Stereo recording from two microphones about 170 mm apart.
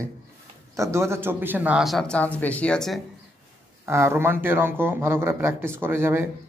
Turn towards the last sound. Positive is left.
turn(degrees=-15)  # may be behind; listen again after turning